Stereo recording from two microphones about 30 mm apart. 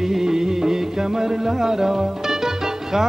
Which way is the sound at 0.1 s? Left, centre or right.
Centre.